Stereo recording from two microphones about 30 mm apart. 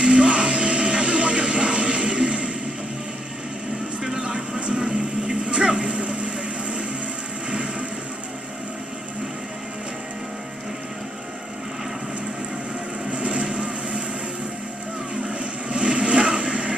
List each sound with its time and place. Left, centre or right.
0.0 s music: right
4.2 s vehicle: right
7.4 s a sound: right
13.1 s vehicle: right
15.2 s vehicle: right